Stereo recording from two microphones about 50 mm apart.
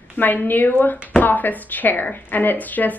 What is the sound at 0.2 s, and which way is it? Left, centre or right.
A woman's voice, left.